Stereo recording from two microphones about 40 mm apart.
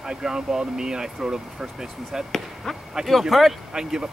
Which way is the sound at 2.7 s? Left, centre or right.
Centre.